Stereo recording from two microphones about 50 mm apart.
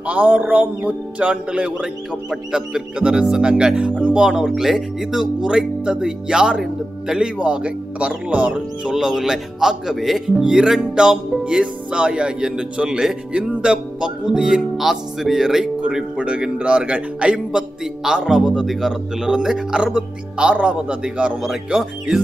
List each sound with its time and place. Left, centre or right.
0.0 s a man's voice: right; by 7.2 s centre
7.3 s a man's voice: right
8.9 s speech: centre
16.2 s a man's voice: right